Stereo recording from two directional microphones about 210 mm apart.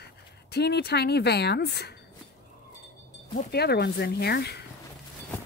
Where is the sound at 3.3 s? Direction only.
45° left (ahead or behind).